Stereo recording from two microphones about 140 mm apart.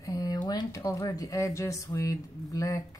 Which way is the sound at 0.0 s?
25° left (ahead or behind).